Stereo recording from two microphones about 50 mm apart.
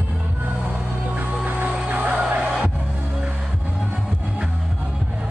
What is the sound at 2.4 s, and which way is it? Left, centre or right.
Music, centre.